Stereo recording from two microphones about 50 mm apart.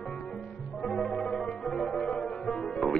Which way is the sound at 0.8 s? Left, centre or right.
Centre.